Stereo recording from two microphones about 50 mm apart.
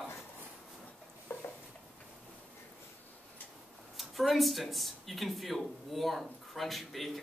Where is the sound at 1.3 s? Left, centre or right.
Left.